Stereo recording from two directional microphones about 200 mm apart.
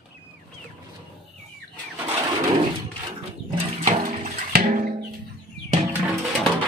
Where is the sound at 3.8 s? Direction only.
35° right (ahead or behind).